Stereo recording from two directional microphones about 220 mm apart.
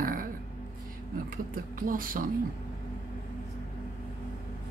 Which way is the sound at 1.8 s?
40° right (ahead or behind).